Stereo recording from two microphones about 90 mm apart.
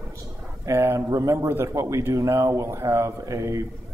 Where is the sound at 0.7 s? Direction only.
30° right (ahead or behind).